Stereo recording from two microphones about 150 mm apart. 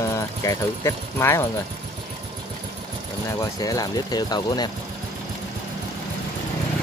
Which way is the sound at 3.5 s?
25° left (ahead or behind).